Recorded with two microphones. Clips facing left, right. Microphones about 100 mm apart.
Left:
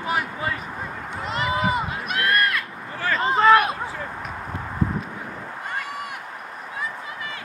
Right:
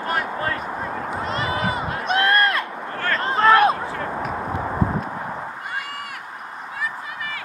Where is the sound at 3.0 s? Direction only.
Centre (ahead or behind).